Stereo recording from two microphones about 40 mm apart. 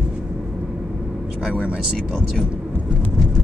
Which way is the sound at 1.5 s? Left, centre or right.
Right.